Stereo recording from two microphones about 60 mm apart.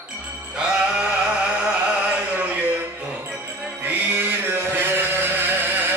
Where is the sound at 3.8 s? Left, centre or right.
Right.